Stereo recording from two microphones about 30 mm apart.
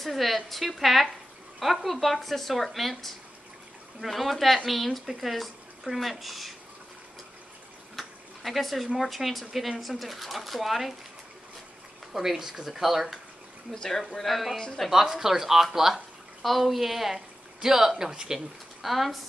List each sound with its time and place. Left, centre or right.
0.0 s speech: centre
4.1 s speech: centre
7.9 s a sound: centre
9.0 s speech: centre
12.1 s speech: centre
13.7 s speech: left
14.2 s speech: centre
14.9 s speech: centre
16.4 s speech: centre
17.6 s speech: centre
18.8 s speech: centre